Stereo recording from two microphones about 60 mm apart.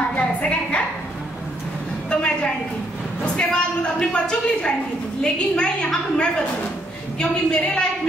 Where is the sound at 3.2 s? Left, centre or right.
Centre.